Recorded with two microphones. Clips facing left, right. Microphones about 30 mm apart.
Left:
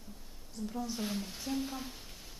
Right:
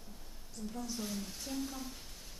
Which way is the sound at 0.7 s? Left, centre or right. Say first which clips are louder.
Left 4 dB; centre.